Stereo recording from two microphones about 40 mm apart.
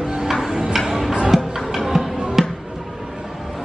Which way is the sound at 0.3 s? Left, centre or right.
Centre.